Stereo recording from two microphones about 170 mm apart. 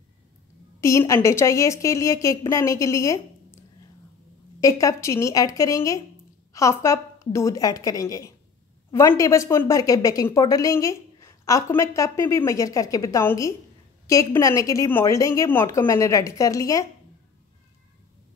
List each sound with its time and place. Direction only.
0.7 s a woman's voice: 15° left (ahead or behind)
4.6 s a woman's voice: 20° left (ahead or behind)